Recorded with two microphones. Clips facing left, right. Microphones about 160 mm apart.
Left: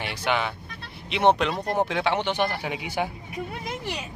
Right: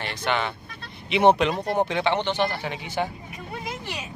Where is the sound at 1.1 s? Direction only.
5° right (ahead or behind); by 3.1 s 10° left (ahead or behind).